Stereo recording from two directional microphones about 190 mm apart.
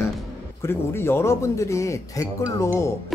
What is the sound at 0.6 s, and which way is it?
A man's voice, 15° left (ahead or behind).